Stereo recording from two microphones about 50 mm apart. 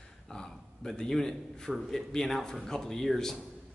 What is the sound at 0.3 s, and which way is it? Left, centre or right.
A man's voice, centre.